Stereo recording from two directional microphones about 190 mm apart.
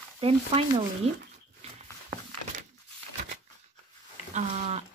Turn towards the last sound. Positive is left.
turn(degrees=-35)  # may be behind; listen again after turning